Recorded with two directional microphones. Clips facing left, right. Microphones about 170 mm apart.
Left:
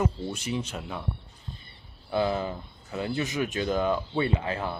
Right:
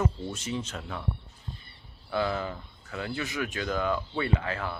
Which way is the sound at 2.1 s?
20° left (ahead or behind).